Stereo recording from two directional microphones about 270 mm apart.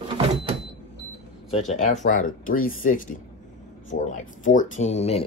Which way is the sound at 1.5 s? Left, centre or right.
Left.